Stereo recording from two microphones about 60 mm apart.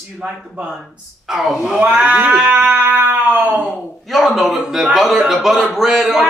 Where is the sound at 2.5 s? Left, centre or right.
Right.